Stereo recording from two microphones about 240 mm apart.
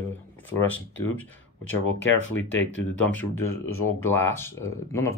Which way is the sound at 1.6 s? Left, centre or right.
Left.